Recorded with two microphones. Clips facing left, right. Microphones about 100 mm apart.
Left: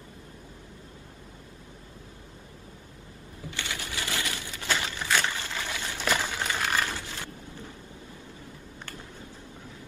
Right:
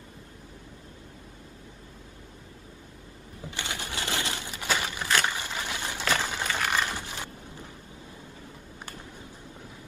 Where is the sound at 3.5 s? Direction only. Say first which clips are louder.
Right 1 dB; 20° right (ahead or behind).